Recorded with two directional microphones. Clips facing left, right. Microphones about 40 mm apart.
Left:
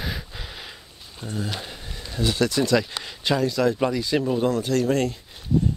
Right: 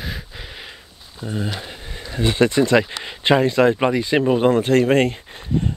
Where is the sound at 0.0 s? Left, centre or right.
Centre.